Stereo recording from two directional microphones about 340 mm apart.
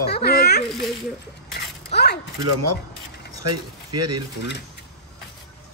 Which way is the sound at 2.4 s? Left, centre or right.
Right.